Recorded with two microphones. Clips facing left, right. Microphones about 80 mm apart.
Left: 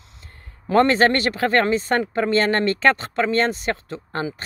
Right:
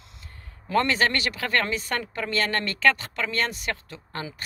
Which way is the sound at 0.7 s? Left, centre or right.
Left.